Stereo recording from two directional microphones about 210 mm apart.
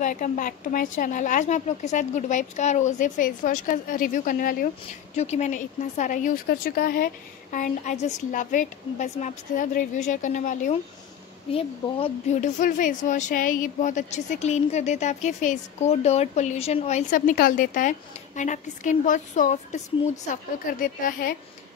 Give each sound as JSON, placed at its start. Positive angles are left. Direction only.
{"t": 0.0, "sound": "a woman's voice", "side_deg": 35}
{"t": 20.8, "sound": "speech", "side_deg": 40}